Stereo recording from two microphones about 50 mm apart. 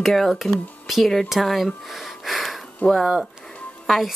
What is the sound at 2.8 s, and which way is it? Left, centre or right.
Speech, left.